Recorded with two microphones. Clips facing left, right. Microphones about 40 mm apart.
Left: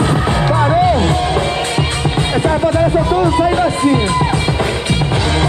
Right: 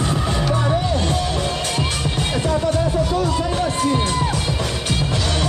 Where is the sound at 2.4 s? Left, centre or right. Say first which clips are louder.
Left 6 dB; left.